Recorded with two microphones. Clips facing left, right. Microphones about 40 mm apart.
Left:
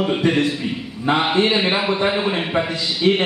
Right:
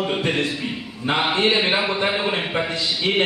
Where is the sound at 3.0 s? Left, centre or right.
Right.